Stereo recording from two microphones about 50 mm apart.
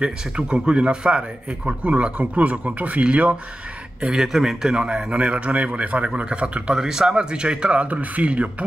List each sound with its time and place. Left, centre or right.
0.0 s a man's voice: centre
4.0 s a man's voice: centre; by 8.6 s right